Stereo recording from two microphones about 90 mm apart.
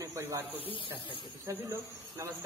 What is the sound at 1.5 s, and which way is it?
Speech, 35° right (ahead or behind).